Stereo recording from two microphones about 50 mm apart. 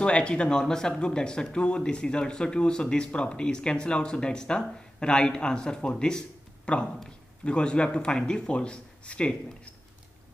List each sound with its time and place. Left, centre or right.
0.0 s a man's voice: centre